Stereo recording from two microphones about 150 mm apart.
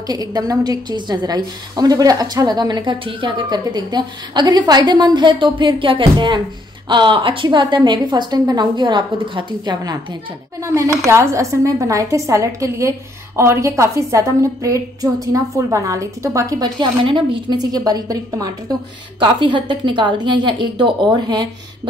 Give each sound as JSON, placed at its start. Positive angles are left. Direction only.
{"t": 0.0, "sound": "a woman's voice", "side_deg": -25}
{"t": 10.6, "sound": "a woman's voice", "side_deg": -20}